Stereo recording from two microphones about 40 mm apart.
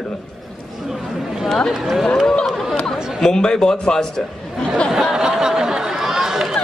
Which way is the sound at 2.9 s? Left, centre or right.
Centre.